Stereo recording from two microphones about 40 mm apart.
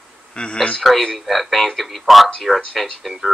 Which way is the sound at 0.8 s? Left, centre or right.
Centre.